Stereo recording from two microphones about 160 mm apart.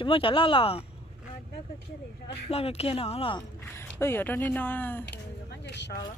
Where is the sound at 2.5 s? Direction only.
40° left (ahead or behind).